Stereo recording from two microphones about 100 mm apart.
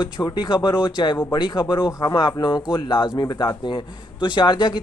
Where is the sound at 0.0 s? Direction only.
50° left (ahead or behind).